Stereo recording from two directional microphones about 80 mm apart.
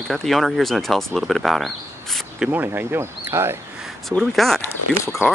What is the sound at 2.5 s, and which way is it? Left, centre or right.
Speech, right.